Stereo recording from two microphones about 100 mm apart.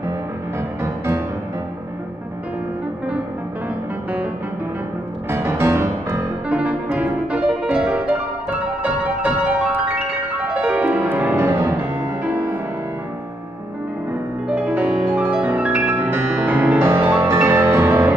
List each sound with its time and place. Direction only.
0.8 s music: 25° right (ahead or behind)
5.3 s music: 25° right (ahead or behind)
6.5 s music: 15° right (ahead or behind)
11.4 s music: 30° right (ahead or behind)
14.5 s music: 15° right (ahead or behind)